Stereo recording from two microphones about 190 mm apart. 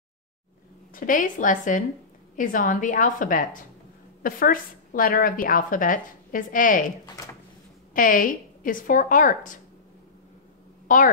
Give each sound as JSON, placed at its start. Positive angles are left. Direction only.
{"t": 0.9, "sound": "a woman's voice", "side_deg": 45}
{"t": 7.2, "sound": "a sound", "side_deg": 20}
{"t": 7.9, "sound": "a woman's voice", "side_deg": 45}
{"t": 10.9, "sound": "a woman's voice", "side_deg": 45}